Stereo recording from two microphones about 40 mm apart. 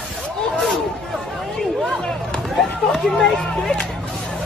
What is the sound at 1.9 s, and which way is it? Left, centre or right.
Chop, centre.